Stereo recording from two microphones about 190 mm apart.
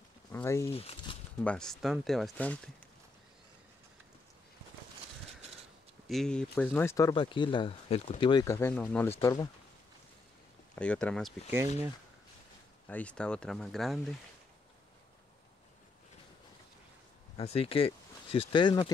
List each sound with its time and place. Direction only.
0.3 s speech: 15° left (ahead or behind)
0.7 s speech: 30° left (ahead or behind)
1.4 s speech: 5° left (ahead or behind)
6.0 s speech: centre (ahead or behind)
9.2 s speech: 20° left (ahead or behind)
10.8 s speech: 5° left (ahead or behind)
12.8 s speech: 5° left (ahead or behind)
17.4 s speech: 30° left (ahead or behind)